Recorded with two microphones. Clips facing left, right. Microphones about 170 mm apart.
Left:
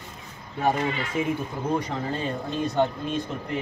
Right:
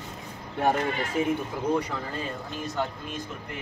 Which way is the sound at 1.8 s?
30° left (ahead or behind).